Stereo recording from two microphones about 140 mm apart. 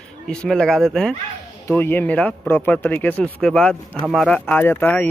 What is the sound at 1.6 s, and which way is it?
Speech, 15° left (ahead or behind).